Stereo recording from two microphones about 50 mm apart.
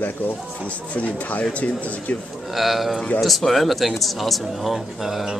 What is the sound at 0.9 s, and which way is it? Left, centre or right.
Speech, left.